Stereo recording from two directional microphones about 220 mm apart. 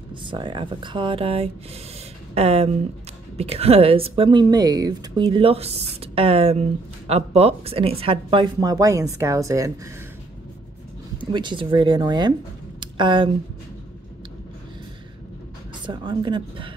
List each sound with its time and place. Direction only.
0.2 s speech: 20° right (ahead or behind)
11.1 s speech: 20° right (ahead or behind)
15.8 s speech: 20° right (ahead or behind)